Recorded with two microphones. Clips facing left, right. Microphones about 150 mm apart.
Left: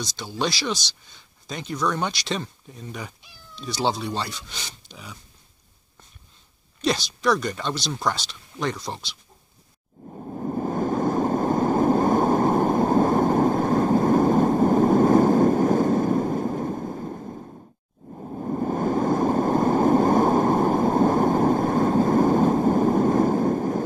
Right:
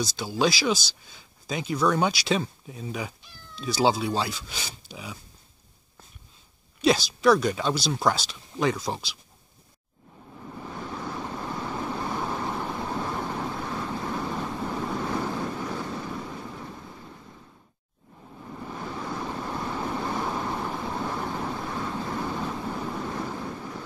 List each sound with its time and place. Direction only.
0.0 s speech: 5° right (ahead or behind)
6.8 s speech: 5° right (ahead or behind)
10.0 s a sound: 45° left (ahead or behind)